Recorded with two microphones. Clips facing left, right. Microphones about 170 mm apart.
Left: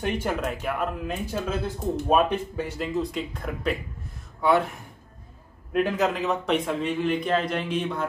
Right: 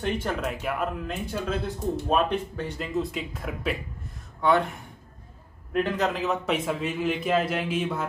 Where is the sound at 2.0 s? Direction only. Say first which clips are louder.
Left 3 dB; 10° left (ahead or behind).